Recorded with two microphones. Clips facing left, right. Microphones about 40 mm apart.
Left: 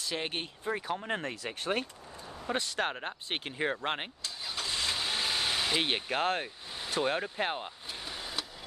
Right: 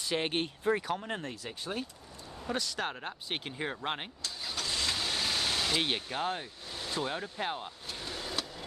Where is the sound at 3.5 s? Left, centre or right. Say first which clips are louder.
Left 4 dB; left.